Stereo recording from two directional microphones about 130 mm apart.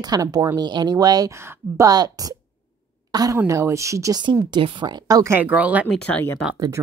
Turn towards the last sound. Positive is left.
turn(degrees=-25)  # may be behind; listen again after turning